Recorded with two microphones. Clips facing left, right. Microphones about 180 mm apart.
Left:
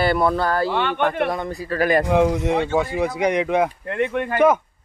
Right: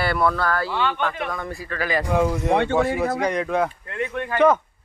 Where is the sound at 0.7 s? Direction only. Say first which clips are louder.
Left 3 dB; 60° left (ahead or behind).